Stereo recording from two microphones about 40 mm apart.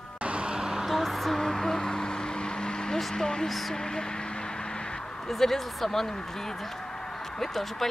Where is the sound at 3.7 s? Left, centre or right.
Centre.